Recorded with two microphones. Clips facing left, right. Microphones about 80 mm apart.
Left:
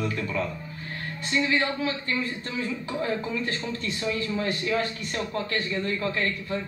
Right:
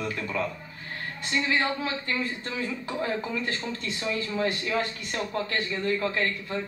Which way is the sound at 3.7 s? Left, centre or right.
Right.